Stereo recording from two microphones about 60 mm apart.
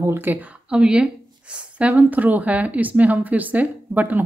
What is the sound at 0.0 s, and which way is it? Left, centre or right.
Speech, right.